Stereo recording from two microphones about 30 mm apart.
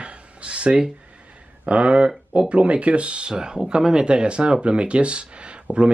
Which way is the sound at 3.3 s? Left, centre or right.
Right.